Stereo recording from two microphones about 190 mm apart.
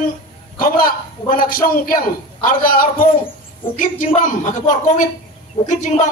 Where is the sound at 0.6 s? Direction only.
50° left (ahead or behind).